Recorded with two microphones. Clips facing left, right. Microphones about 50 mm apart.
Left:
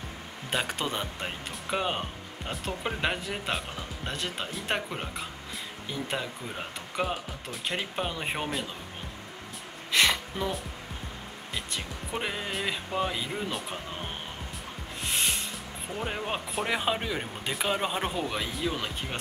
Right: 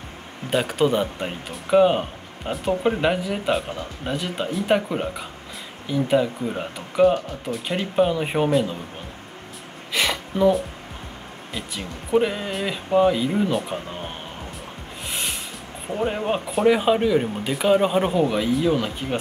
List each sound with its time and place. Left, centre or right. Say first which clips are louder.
0.5 s speech: right 10 dB; centre
9.9 s a sound: right 3 dB; centre
11.5 s speech: right 4 dB; centre
15.0 s music: even; centre
16.1 s speech: right 8 dB; centre